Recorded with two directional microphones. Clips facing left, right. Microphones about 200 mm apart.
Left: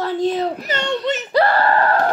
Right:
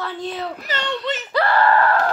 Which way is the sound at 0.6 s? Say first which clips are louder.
Left 4 dB; 20° left (ahead or behind).